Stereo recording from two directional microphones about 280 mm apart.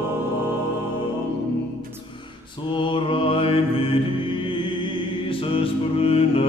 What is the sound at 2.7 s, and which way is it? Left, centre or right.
Mantra, centre.